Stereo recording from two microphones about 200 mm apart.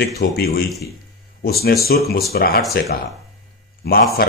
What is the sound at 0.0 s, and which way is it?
Speech, 50° left (ahead or behind).